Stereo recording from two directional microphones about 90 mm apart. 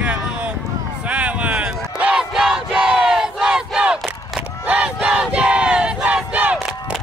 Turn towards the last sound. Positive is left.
turn(degrees=-15)  # may be behind; listen again after turning